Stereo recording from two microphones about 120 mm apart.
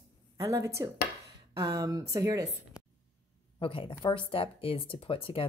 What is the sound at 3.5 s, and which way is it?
Speech, 45° left (ahead or behind).